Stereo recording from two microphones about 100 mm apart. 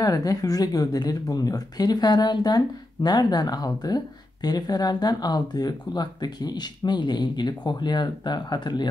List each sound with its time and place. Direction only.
0.0 s speech: 40° left (ahead or behind)